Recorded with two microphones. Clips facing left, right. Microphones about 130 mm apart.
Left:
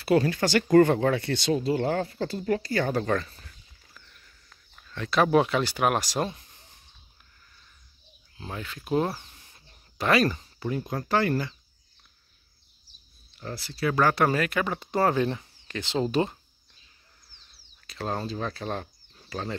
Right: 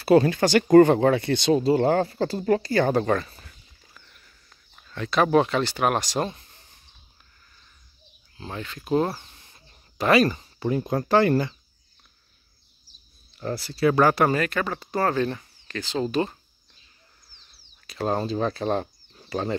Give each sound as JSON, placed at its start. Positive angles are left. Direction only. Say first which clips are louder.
{"t": 0.0, "sound": "speech", "louder": "right 5 dB", "side_deg": -25}
{"t": 1.5, "sound": "speech", "louder": "right 6 dB", "side_deg": -35}
{"t": 1.9, "sound": "speech", "louder": "right 6 dB", "side_deg": -75}
{"t": 2.2, "sound": "speech", "louder": "right 5 dB", "side_deg": -35}
{"t": 2.9, "sound": "speech", "louder": "right 4 dB", "side_deg": -20}
{"t": 4.9, "sound": "speech", "louder": "right 2 dB", "side_deg": 0}
{"t": 8.4, "sound": "speech", "louder": "right 2 dB", "side_deg": 5}
{"t": 9.1, "sound": "a sound", "louder": "right 1 dB", "side_deg": 0}
{"t": 11.1, "sound": "speech", "louder": "right 5 dB", "side_deg": -30}
{"t": 13.4, "sound": "speech", "louder": "right 7 dB", "side_deg": -45}
{"t": 14.0, "sound": "speech", "louder": "right 3 dB", "side_deg": -5}
{"t": 17.8, "sound": "speech", "louder": "right 6 dB", "side_deg": -15}
{"t": 18.1, "sound": "speech", "louder": "right 6 dB", "side_deg": -25}